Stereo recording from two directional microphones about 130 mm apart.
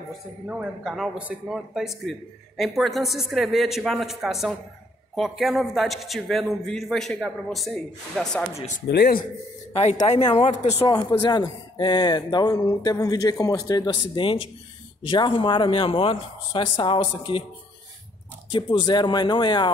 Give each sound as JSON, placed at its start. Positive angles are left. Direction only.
{"t": 0.5, "sound": "a man's voice", "side_deg": -5}
{"t": 8.5, "sound": "speech", "side_deg": 65}
{"t": 10.2, "sound": "speech", "side_deg": 45}
{"t": 10.9, "sound": "speech", "side_deg": 30}
{"t": 14.2, "sound": "speech", "side_deg": 45}
{"t": 18.5, "sound": "speech", "side_deg": 35}